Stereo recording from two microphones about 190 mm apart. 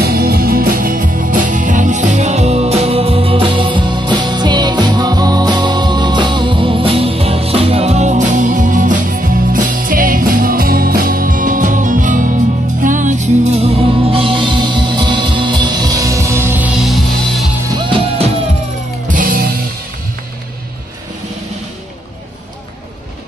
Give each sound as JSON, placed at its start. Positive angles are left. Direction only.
{"t": 0.0, "sound": "music", "side_deg": -55}
{"t": 17.6, "sound": "music", "side_deg": -25}
{"t": 19.0, "sound": "music", "side_deg": -45}